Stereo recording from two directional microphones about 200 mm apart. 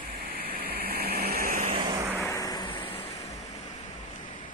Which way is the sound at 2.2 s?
15° left (ahead or behind).